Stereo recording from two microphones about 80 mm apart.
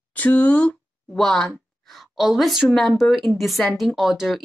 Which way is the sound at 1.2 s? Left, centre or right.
Centre.